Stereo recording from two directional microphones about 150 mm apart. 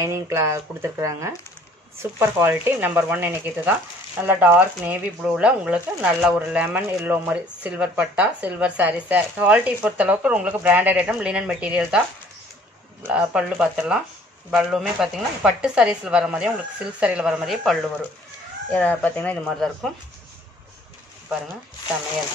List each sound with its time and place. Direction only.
0.0 s speech: 20° right (ahead or behind)
13.0 s speech: 5° right (ahead or behind)
18.7 s speech: 10° left (ahead or behind)